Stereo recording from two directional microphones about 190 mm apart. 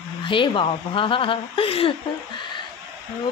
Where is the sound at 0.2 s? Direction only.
25° left (ahead or behind).